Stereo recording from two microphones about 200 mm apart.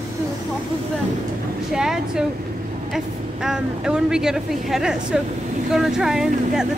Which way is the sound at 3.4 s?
5° right (ahead or behind).